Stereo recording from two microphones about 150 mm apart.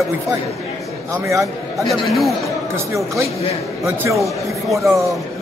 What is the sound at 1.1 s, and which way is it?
Speech, 20° right (ahead or behind).